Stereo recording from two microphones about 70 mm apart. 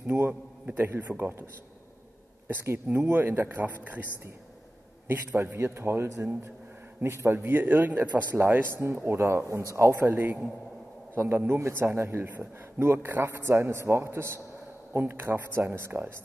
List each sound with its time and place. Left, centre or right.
0.0 s a man's voice: right
2.4 s a man's voice: right
7.3 s a man's voice: right